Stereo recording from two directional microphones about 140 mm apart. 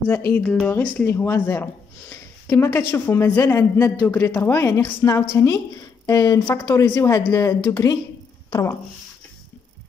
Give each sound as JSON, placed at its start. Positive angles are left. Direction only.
{"t": 0.3, "sound": "a woman's voice", "side_deg": 5}